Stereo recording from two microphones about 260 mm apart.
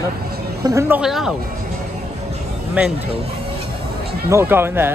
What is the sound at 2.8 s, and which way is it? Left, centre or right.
Speech, centre.